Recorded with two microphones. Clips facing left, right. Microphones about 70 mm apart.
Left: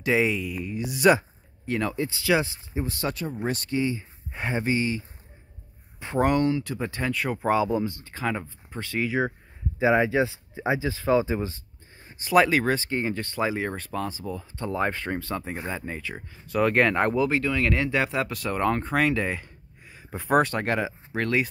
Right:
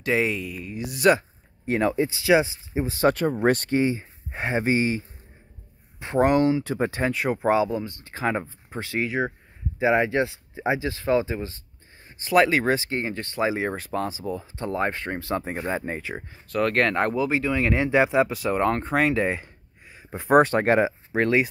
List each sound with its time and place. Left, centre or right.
0.0 s speech: centre
1.7 s speech: right
2.7 s speech: right
3.1 s speech: right
5.9 s speech: centre
6.6 s speech: right; by 10.8 s centre
10.9 s speech: centre
12.6 s speech: centre
13.5 s speech: centre
15.3 s speech: right
16.4 s speech: centre
20.3 s speech: right